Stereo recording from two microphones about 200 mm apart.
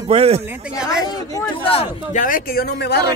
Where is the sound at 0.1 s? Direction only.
30° right (ahead or behind).